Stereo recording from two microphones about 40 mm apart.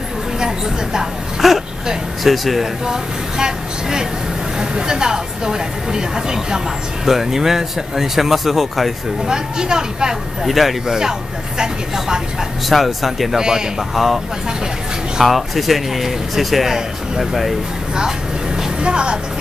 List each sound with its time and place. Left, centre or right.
1.4 s speech: centre
2.6 s a woman's voice: centre
9.2 s a woman's voice: centre
10.4 s speech: centre
11.0 s a woman's voice: centre
12.6 s speech: centre
13.4 s a woman's voice: centre
13.9 s speech: centre
15.2 s speech: centre
18.8 s speech: right